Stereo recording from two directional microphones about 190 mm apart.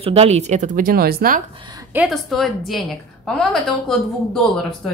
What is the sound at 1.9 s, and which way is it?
Speech, centre (ahead or behind).